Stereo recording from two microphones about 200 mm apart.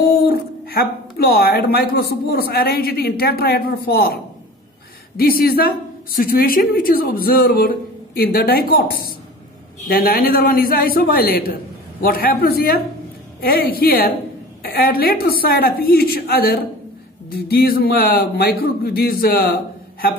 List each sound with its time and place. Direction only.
0.0 s a woman's voice: 50° left (ahead or behind)